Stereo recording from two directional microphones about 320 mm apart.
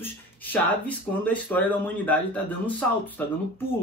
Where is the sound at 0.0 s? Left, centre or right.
Centre.